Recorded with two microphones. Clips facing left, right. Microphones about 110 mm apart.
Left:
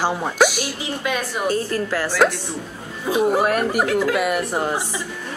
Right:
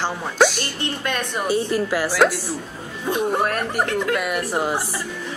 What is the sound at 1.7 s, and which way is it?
Speech, 10° right (ahead or behind).